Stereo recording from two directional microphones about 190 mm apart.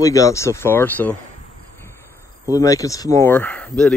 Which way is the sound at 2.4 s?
15° left (ahead or behind).